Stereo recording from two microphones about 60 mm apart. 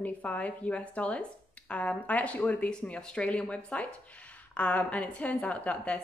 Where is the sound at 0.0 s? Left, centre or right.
Left.